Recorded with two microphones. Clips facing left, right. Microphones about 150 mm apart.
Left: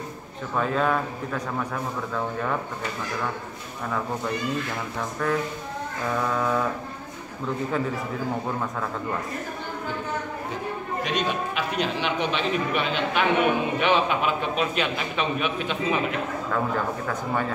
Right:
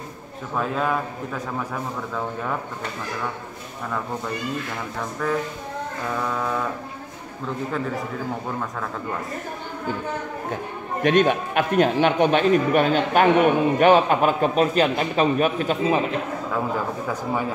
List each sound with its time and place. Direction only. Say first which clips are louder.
0.6 s a man's voice: even; centre (ahead or behind)
5.2 s a man's voice: right 1 dB; centre (ahead or behind)
11.0 s a man's voice: right 10 dB; 55° right (ahead or behind); by 16.2 s 40° right (ahead or behind)
16.5 s a man's voice: even; 10° right (ahead or behind)